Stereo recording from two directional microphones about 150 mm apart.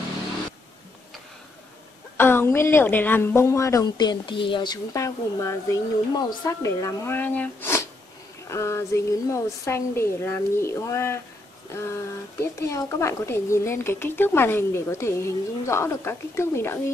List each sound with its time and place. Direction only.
2.1 s a woman's voice: 15° left (ahead or behind)